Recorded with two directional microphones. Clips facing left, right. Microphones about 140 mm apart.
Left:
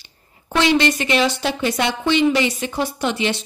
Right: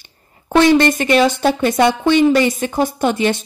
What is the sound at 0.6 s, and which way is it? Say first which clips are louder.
A woman's voice: right 6 dB; 50° right (ahead or behind).